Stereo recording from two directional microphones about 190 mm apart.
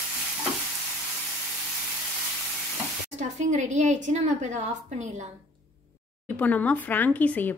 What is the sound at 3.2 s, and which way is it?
A woman's voice, 40° right (ahead or behind).